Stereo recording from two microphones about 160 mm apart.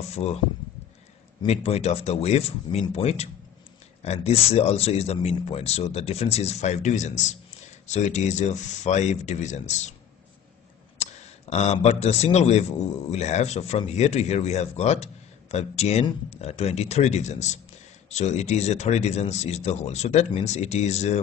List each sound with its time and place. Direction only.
0.1 s speech: 40° left (ahead or behind)
1.4 s a man's voice: 40° left (ahead or behind)
11.5 s a man's voice: 45° left (ahead or behind)